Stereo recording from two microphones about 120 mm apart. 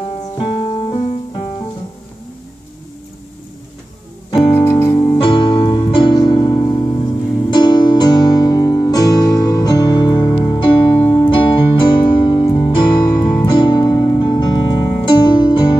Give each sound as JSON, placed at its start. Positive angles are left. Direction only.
{"t": 0.0, "sound": "music", "side_deg": 50}
{"t": 4.6, "sound": "music", "side_deg": 20}
{"t": 4.9, "sound": "music", "side_deg": 40}
{"t": 11.1, "sound": "music", "side_deg": 45}